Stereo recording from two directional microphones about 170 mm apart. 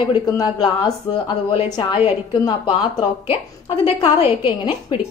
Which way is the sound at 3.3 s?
30° left (ahead or behind).